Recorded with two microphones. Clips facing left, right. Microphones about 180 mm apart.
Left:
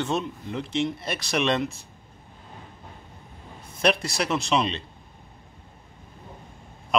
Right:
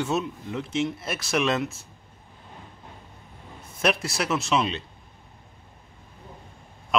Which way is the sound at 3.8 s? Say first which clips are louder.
Left 1 dB; centre (ahead or behind).